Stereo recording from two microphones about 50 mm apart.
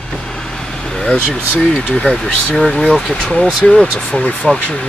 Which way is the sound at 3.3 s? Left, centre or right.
Left.